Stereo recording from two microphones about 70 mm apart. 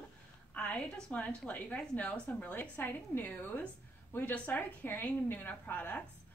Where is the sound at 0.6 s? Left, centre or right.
Centre.